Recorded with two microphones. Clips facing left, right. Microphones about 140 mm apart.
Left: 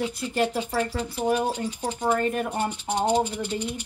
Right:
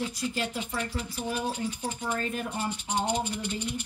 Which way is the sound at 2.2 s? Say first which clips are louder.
Left 6 dB; 60° left (ahead or behind).